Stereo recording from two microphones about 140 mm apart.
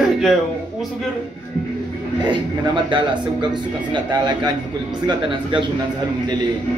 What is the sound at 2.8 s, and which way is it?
A man's voice, 35° right (ahead or behind).